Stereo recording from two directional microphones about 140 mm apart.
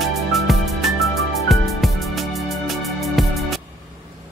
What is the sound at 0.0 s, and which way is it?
Music, centre (ahead or behind).